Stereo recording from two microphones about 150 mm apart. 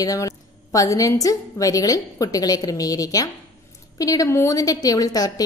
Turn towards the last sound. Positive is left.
turn(degrees=25)  # may be behind; listen again after turning